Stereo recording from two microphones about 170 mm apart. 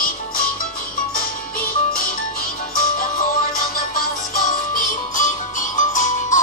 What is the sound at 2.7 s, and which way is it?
Music, 55° left (ahead or behind).